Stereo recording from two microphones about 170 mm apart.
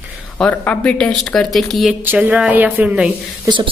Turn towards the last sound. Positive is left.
turn(degrees=-5)  # may be behind; listen again after turning